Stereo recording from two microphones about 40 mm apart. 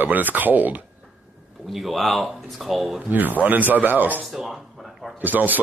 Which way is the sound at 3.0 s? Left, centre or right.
Right.